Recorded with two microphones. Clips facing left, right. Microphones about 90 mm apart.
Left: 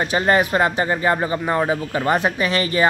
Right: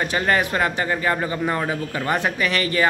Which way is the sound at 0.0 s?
25° left (ahead or behind).